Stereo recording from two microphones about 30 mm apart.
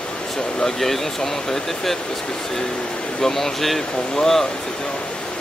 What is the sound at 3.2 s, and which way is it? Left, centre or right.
Speech, centre.